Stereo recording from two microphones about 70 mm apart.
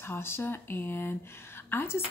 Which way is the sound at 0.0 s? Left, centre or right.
Left.